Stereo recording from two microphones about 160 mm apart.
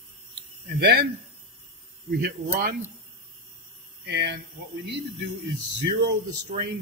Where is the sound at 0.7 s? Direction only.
90° right.